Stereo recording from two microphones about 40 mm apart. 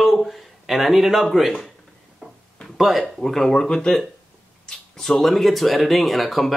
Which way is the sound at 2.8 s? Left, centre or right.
Centre.